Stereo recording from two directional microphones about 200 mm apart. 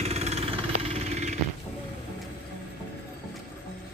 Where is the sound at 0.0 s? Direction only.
30° right (ahead or behind).